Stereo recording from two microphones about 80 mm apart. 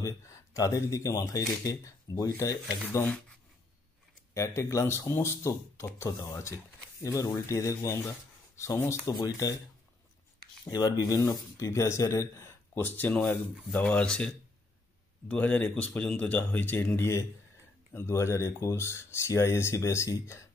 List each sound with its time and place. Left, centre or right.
0.0 s speech: left
3.0 s speech: left
4.3 s speech: left
10.6 s speech: left
11.5 s speech: left